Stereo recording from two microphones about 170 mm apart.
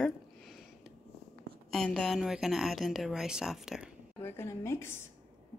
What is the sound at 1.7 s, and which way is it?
Speech, centre (ahead or behind).